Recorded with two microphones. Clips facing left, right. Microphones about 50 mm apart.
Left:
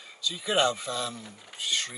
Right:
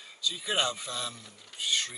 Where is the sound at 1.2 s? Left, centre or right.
Centre.